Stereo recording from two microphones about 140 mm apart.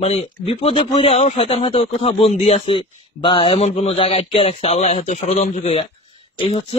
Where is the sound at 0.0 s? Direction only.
45° left (ahead or behind).